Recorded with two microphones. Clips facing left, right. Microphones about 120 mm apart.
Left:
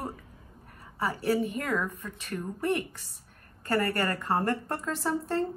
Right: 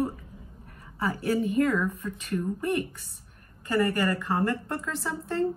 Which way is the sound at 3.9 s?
40° left (ahead or behind).